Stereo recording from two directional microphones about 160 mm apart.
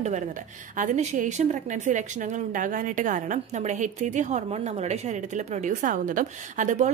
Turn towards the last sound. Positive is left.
turn(degrees=-50)  # may be behind; listen again after turning